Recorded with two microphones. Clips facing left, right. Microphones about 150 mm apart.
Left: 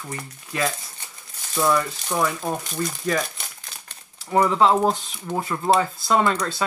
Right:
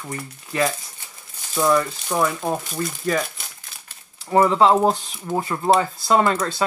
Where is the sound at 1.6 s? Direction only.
20° right (ahead or behind).